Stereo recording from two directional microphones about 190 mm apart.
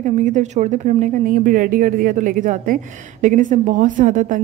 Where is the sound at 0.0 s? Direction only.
40° right (ahead or behind).